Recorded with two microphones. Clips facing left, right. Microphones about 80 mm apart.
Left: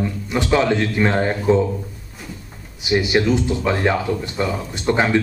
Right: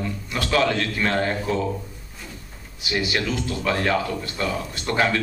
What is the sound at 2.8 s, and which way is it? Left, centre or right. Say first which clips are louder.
Speech: left 7 dB; left.